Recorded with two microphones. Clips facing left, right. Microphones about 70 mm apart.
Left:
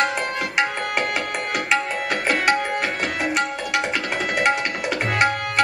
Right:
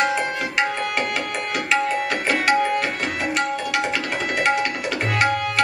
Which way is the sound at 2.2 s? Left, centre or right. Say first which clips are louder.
Right 1 dB; centre.